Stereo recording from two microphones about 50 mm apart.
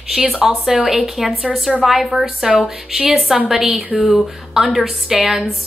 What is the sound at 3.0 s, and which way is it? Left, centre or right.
Speech, right.